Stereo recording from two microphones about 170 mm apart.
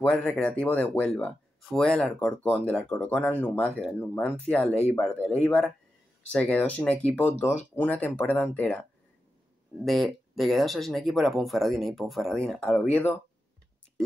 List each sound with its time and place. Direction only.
0.0 s speech: 10° left (ahead or behind)
9.8 s speech: centre (ahead or behind)